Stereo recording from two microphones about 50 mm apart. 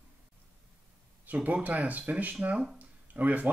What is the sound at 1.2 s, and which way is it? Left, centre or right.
Speech, right.